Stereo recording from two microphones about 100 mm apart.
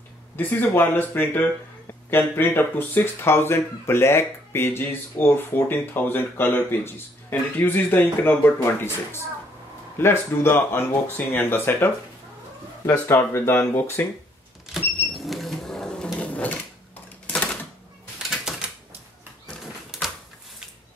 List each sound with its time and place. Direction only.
0.4 s speech: 20° left (ahead or behind)
13.1 s speech: 30° left (ahead or behind)
14.7 s power windows: centre (ahead or behind)
16.2 s sewing machine: 15° left (ahead or behind)
18.3 s typewriter: 5° right (ahead or behind)
19.4 s a sound: centre (ahead or behind)